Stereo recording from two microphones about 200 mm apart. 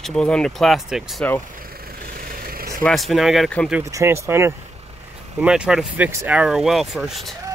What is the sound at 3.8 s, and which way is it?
Speech, 15° right (ahead or behind).